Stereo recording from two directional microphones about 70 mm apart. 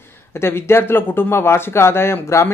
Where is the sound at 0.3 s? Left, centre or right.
Left.